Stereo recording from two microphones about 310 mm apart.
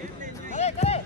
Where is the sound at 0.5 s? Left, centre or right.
Left.